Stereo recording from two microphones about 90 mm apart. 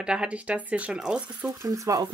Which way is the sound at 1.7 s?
40° right (ahead or behind).